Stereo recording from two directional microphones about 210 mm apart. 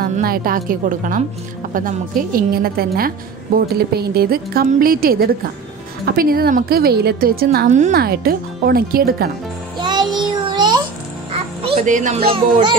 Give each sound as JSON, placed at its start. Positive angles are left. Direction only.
{"t": 0.0, "sound": "a woman's voice", "side_deg": -45}
{"t": 9.8, "sound": "child singing", "side_deg": -20}
{"t": 11.3, "sound": "a child's voice", "side_deg": -30}